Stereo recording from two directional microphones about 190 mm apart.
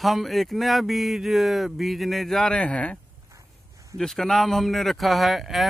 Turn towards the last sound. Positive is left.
turn(degrees=0)  # may be behind; listen again after turning